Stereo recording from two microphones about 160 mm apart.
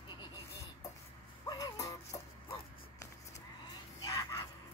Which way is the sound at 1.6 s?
20° left (ahead or behind).